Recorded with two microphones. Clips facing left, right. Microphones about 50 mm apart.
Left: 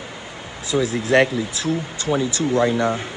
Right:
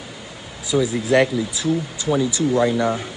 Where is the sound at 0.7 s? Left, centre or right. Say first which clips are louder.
Right 1 dB; centre.